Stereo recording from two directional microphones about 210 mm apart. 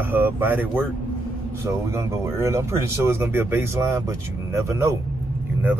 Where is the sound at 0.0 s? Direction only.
10° right (ahead or behind).